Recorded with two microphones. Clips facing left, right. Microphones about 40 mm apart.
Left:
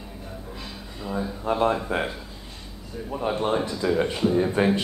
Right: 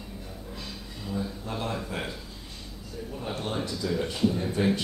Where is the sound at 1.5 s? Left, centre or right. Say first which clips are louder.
Left 13 dB; left.